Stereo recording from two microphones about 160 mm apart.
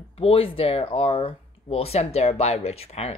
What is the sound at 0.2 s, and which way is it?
A woman's voice, 35° left (ahead or behind).